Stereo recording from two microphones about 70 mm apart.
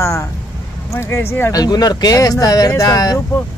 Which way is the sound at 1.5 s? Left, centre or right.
Left.